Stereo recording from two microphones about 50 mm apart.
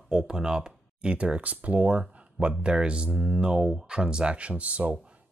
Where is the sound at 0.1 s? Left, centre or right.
Centre.